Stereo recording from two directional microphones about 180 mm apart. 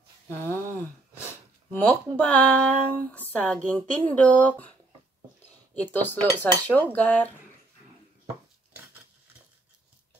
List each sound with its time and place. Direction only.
0.3 s a sound: 15° left (ahead or behind)
1.7 s speech: 10° left (ahead or behind)
5.8 s speech: 10° left (ahead or behind)